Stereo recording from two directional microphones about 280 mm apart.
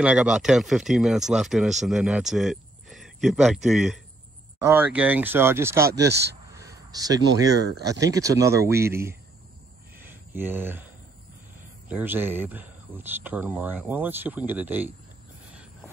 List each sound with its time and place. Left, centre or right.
0.0 s speech: centre
5.9 s speech: right
6.5 s a sound: centre
7.8 s speech: centre
10.0 s a sound: centre
11.9 s speech: centre